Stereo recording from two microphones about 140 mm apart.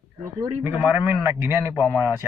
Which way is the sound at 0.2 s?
20° right (ahead or behind).